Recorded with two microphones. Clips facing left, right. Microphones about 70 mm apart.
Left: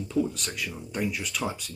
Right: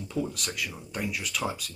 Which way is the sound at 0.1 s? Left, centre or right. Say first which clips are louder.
Left 4 dB; centre.